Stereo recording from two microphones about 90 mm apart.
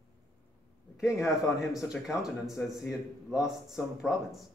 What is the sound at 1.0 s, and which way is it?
A man's voice, 5° right (ahead or behind).